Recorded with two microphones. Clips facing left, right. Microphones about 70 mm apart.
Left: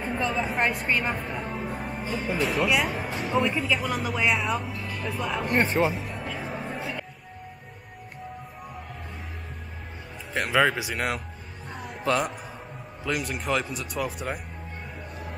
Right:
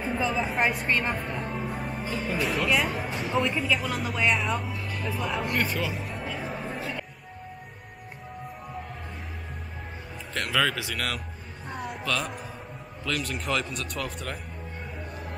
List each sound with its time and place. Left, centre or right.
0.0 s speech: centre
5.4 s speech: left
5.9 s music: centre
10.3 s speech: left
11.7 s a sound: centre
13.2 s speech: centre